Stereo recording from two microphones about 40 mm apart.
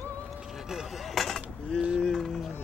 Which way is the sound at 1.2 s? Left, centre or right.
Centre.